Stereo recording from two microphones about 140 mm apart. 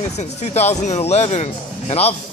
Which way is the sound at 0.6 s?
50° left (ahead or behind).